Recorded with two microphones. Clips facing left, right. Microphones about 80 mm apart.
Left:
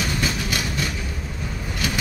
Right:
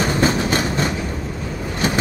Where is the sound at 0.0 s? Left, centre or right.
Right.